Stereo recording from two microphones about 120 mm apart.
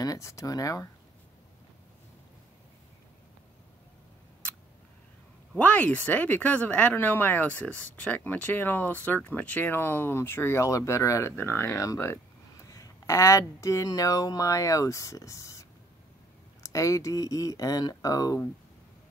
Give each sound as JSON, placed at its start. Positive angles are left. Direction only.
{"t": 0.0, "sound": "speech", "side_deg": 30}
{"t": 5.6, "sound": "speech", "side_deg": 10}
{"t": 16.6, "sound": "speech", "side_deg": 25}